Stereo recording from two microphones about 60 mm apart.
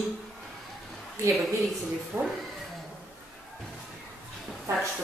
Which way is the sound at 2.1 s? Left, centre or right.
Right.